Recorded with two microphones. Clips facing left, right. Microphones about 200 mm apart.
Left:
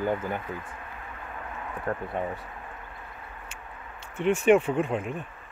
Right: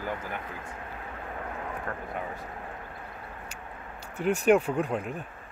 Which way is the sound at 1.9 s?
35° left (ahead or behind).